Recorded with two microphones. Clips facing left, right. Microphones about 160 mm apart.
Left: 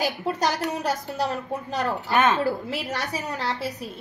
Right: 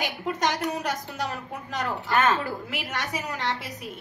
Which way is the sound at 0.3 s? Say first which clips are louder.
Right 1 dB; 35° left (ahead or behind).